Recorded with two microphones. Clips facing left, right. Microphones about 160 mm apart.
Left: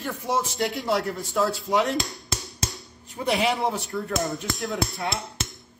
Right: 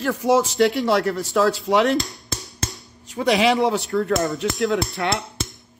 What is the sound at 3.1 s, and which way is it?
Speech, 90° right.